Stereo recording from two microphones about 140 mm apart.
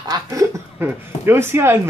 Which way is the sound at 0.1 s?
25° right (ahead or behind).